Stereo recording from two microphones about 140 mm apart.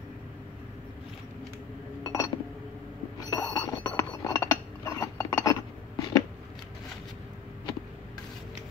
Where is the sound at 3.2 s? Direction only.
25° left (ahead or behind).